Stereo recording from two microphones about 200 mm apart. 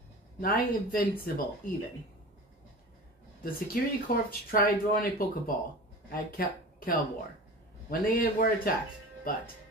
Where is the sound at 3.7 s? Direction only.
45° left (ahead or behind).